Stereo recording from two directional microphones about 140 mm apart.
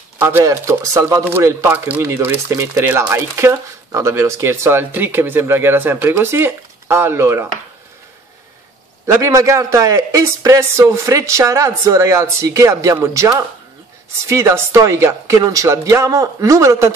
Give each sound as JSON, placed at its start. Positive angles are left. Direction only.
{"t": 0.2, "sound": "speech", "side_deg": -20}
{"t": 9.0, "sound": "speech", "side_deg": -20}